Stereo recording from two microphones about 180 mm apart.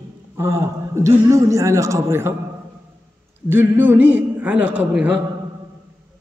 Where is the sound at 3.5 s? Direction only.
10° right (ahead or behind).